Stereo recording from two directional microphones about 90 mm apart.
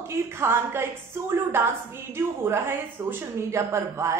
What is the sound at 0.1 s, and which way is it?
A woman's voice, 30° right (ahead or behind).